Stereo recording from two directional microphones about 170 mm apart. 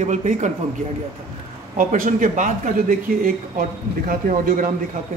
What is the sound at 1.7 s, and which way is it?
A man's voice, 50° right (ahead or behind).